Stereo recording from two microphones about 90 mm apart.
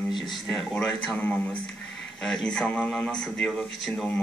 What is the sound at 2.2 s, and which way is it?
A man's voice, 10° left (ahead or behind).